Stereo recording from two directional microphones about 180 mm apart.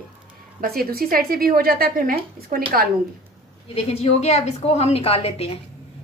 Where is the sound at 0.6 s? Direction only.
55° right (ahead or behind).